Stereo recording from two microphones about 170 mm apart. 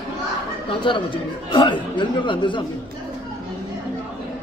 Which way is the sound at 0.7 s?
30° left (ahead or behind).